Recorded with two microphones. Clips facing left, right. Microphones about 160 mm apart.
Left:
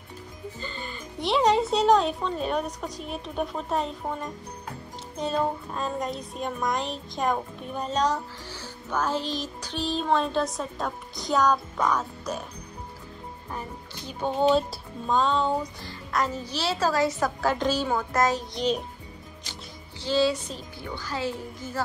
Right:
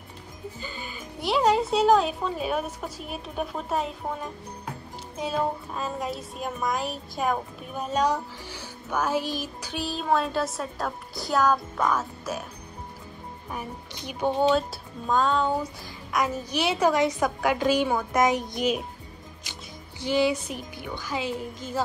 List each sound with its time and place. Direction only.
0.6 s speech: 10° right (ahead or behind)
13.5 s a woman's voice: 10° right (ahead or behind)
14.5 s speech: centre (ahead or behind)
15.8 s a woman's voice: 10° right (ahead or behind)
20.0 s a woman's voice: 15° right (ahead or behind)